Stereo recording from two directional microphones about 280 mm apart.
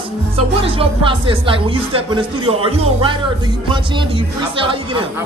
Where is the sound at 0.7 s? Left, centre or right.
Centre.